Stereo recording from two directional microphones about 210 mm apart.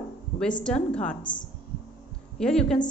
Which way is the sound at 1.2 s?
20° left (ahead or behind).